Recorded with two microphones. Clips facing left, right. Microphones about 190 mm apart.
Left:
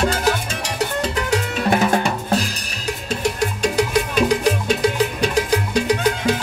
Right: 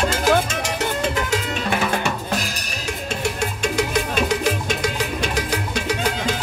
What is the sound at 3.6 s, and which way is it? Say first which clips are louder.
Music: left 3 dB; 35° left (ahead or behind).